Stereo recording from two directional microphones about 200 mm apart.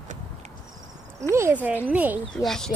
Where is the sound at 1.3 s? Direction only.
10° right (ahead or behind).